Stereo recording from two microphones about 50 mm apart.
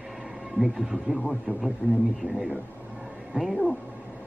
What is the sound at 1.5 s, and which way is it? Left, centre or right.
Speech, right.